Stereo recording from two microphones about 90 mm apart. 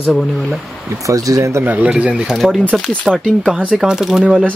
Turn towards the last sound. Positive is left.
turn(degrees=-10)  # may be behind; listen again after turning